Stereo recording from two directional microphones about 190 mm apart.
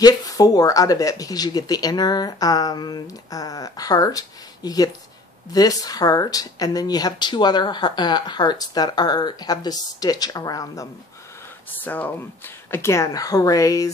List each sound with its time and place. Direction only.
0.0 s speech: 20° left (ahead or behind)